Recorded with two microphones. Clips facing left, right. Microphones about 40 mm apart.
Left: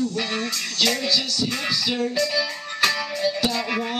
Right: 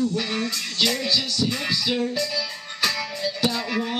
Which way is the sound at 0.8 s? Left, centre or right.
Centre.